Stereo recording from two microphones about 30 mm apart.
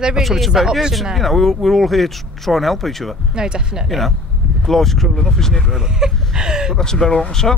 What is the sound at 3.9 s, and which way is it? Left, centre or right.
Speech, centre.